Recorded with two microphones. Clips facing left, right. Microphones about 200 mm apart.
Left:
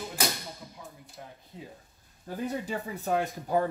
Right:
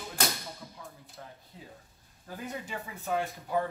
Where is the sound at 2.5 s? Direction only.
40° left (ahead or behind).